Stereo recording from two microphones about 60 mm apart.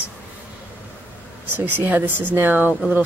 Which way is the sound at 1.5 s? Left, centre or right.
Right.